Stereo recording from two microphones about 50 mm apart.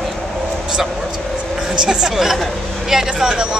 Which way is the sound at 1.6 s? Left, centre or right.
Centre.